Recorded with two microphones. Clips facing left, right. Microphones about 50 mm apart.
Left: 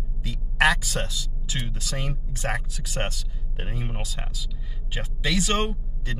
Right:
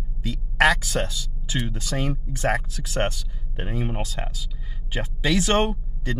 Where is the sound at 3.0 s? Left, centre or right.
Right.